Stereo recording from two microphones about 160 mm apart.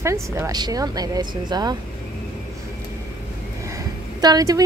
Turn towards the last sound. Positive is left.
turn(degrees=-25)  # may be behind; listen again after turning